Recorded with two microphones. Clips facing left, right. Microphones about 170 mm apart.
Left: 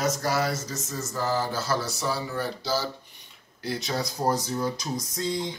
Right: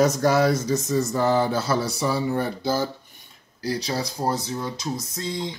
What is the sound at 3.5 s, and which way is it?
Speech, 35° right (ahead or behind).